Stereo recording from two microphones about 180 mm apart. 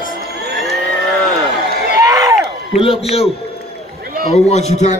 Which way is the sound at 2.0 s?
20° right (ahead or behind).